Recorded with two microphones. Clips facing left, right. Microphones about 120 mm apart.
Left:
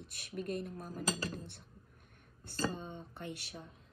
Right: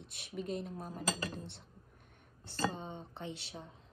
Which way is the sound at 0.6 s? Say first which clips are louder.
Even; 25° right (ahead or behind).